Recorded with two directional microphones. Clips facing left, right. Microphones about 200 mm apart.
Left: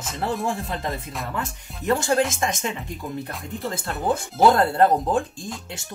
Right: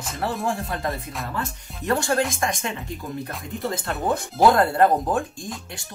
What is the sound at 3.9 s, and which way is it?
Speech, centre (ahead or behind).